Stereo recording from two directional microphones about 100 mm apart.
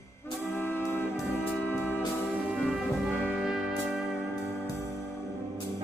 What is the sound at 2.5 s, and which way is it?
Music, 10° right (ahead or behind).